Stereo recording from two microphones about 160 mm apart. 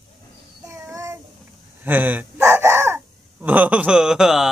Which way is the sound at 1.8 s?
10° right (ahead or behind).